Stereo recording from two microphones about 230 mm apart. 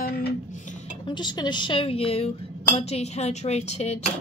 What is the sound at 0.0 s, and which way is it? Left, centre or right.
Dishes, left.